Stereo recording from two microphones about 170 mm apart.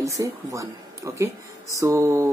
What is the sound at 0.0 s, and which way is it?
Speech, 20° right (ahead or behind).